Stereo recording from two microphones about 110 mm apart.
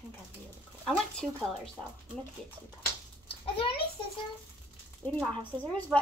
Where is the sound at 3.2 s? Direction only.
55° left (ahead or behind).